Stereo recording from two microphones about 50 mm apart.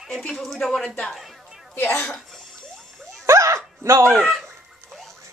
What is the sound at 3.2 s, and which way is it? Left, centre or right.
Dog, right.